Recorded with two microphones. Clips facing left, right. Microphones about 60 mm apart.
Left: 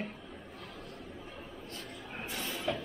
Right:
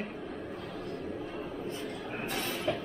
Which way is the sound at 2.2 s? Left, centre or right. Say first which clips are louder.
Right 4 dB; right.